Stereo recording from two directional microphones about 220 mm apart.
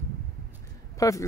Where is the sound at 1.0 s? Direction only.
15° left (ahead or behind).